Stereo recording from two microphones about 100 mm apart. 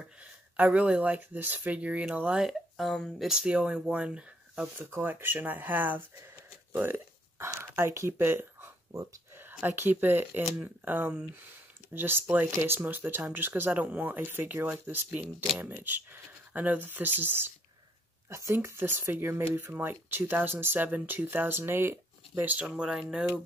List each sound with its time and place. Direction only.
0.0 s speech: 15° right (ahead or behind)
9.0 s a sound: 35° right (ahead or behind)
9.4 s speech: 20° right (ahead or behind)